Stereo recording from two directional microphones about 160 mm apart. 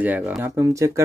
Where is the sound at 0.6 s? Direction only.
20° right (ahead or behind).